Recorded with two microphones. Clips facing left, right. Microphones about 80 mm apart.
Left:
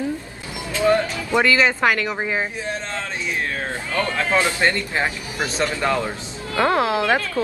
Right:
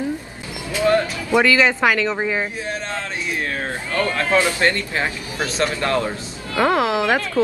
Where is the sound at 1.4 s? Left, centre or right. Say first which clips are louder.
Right 1 dB; centre.